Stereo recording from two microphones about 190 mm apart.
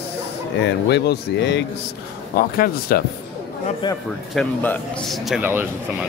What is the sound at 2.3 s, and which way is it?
Speech, 50° left (ahead or behind).